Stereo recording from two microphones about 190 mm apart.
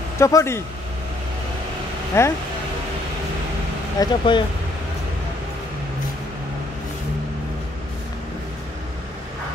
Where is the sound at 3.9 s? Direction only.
25° left (ahead or behind).